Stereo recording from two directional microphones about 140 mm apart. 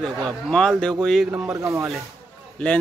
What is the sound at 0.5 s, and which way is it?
Speech, 5° left (ahead or behind).